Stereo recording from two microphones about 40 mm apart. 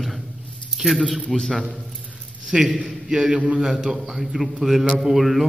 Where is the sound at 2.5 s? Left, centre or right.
Centre.